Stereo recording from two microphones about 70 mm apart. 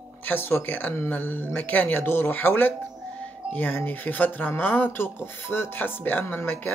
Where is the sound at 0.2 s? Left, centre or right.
Left.